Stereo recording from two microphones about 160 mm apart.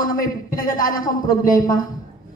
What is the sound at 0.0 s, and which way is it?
A man's voice, 60° left (ahead or behind).